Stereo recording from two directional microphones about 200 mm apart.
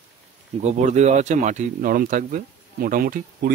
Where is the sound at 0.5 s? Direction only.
35° right (ahead or behind).